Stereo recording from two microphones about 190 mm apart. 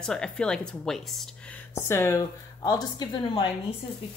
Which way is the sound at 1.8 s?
15° left (ahead or behind).